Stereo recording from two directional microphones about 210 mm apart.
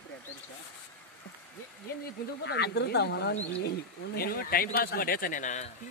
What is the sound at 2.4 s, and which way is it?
A man's voice, 55° left (ahead or behind).